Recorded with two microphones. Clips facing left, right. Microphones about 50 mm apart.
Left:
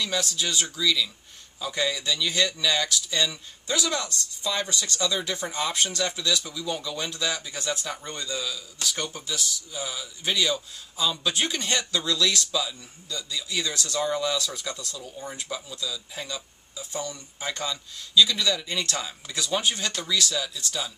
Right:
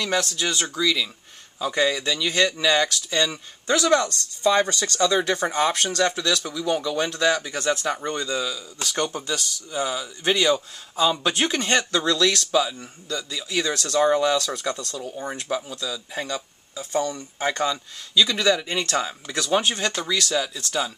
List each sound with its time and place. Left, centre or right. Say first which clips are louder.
0.4 s speech: right 3 dB; right
0.7 s speech: right 2 dB; right
6.6 s speech: right 7 dB; right
8.9 s speech: right 11 dB; right
18.4 s speech: right 5 dB; right